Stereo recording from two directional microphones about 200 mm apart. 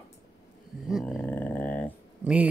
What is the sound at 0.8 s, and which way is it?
Dog, centre (ahead or behind).